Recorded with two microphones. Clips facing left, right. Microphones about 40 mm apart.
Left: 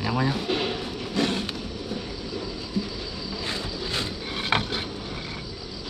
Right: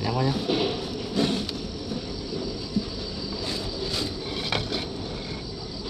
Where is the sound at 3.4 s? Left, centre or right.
Left.